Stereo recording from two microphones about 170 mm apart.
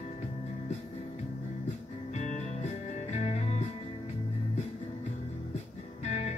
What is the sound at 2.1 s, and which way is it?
Music, 45° left (ahead or behind).